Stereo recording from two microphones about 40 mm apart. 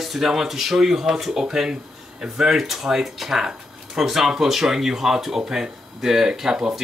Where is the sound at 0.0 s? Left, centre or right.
Centre.